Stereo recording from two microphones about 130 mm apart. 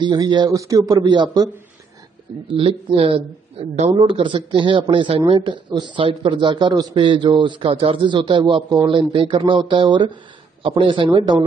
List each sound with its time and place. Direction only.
0.0 s speech: 35° right (ahead or behind)
2.5 s speech: 45° right (ahead or behind)
3.9 s speech: 40° right (ahead or behind)